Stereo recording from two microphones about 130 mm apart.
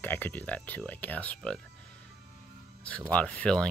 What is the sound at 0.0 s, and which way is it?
Speech, 15° left (ahead or behind).